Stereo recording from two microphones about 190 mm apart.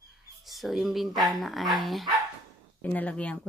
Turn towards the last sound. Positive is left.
turn(degrees=5)  # may be behind; listen again after turning